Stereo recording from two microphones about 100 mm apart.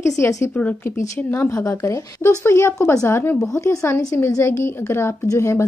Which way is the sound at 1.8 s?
30° left (ahead or behind).